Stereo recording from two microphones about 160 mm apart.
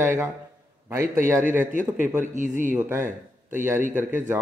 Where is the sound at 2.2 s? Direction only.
55° right (ahead or behind).